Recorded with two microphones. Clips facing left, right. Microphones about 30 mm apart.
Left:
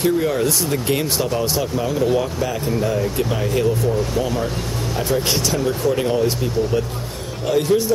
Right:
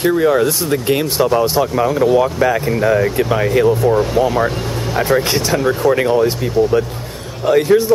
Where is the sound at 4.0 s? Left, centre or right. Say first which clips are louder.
Right 7 dB; centre.